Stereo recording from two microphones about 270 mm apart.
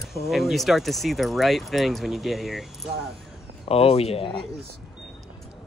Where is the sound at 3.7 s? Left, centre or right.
Left.